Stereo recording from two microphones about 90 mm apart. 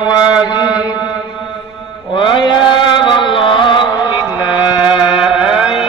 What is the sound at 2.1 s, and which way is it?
Chant, 60° left (ahead or behind).